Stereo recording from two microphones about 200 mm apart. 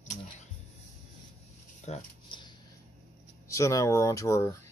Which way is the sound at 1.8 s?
30° left (ahead or behind).